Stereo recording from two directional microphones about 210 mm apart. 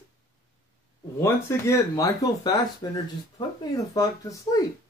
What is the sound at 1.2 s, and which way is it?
Speech, 15° left (ahead or behind).